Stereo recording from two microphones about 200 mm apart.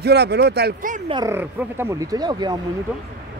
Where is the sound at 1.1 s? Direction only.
15° right (ahead or behind).